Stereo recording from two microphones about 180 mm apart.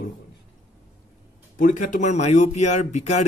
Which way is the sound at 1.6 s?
45° left (ahead or behind).